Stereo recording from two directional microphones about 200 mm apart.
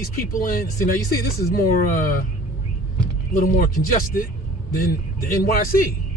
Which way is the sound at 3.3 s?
45° left (ahead or behind).